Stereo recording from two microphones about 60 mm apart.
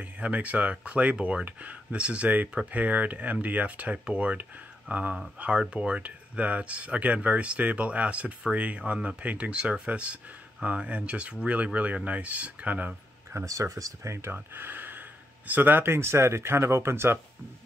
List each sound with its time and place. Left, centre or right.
0.0 s speech: right
13.5 s speech: right
14.3 s speech: right